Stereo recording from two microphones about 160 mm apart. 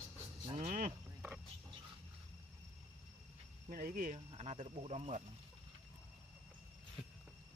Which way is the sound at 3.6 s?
65° right (ahead or behind).